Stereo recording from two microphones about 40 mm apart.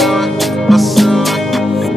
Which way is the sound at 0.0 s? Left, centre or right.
Centre.